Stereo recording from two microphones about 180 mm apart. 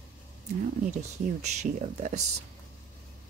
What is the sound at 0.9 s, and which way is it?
Speech, 40° right (ahead or behind).